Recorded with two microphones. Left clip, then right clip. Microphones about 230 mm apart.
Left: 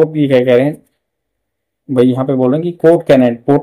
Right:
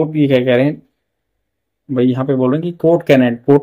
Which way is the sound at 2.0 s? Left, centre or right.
Centre.